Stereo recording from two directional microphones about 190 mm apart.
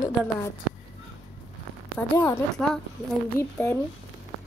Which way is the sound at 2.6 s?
5° left (ahead or behind).